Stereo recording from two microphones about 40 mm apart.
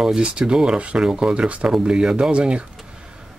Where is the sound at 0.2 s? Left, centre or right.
Right.